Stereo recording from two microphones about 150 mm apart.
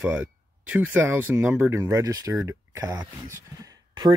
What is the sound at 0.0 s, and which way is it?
Speech, 10° right (ahead or behind).